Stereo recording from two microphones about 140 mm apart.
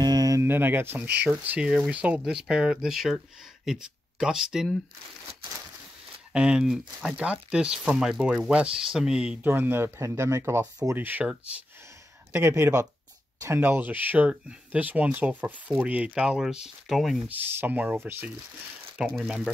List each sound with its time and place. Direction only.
0.0 s speech: 30° right (ahead or behind); by 4.7 s 5° right (ahead or behind)
6.3 s speech: 5° right (ahead or behind)
17.3 s speech: 10° right (ahead or behind)